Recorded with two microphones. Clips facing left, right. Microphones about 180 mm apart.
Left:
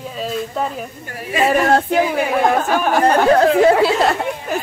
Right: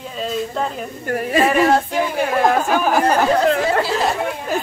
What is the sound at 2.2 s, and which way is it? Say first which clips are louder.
Speech: left 1 dB; 5° left (ahead or behind).